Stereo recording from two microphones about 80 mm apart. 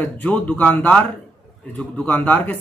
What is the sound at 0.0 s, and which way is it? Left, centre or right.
Speech, left.